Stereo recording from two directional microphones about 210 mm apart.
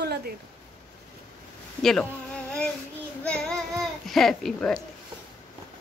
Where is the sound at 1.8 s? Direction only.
Centre (ahead or behind).